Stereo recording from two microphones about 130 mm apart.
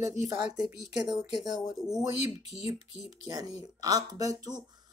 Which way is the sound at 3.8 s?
30° right (ahead or behind).